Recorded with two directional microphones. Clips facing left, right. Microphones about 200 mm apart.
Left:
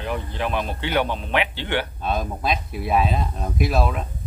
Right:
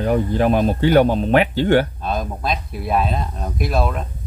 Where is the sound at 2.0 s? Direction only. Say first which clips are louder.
Right 1 dB; centre (ahead or behind).